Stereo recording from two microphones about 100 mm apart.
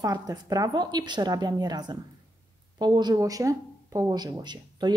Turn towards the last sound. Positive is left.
turn(degrees=-45)  # may be behind; listen again after turning